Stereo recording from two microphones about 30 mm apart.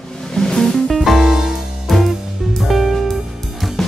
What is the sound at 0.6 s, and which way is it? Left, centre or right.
Music, centre.